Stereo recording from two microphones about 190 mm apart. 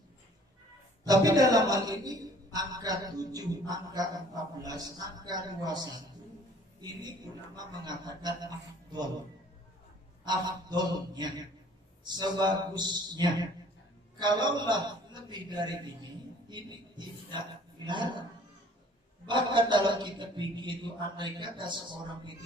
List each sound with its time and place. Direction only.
1.0 s a man's voice: 20° right (ahead or behind)
7.5 s a man's voice: 20° right (ahead or behind)
10.2 s a man's voice: 20° right (ahead or behind)
19.2 s a man's voice: 25° right (ahead or behind)